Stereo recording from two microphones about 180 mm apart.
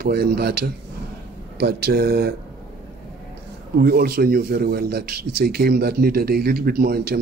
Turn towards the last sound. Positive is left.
turn(degrees=-60)  # may be behind; listen again after turning